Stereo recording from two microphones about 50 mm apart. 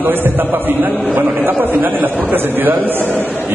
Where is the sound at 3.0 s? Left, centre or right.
Left.